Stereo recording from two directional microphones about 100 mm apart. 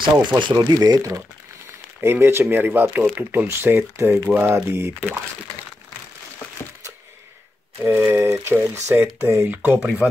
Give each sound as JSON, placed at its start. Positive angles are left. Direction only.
{"t": 0.4, "sound": "speech", "side_deg": -50}
{"t": 2.0, "sound": "speech", "side_deg": -25}
{"t": 7.8, "sound": "speech", "side_deg": -20}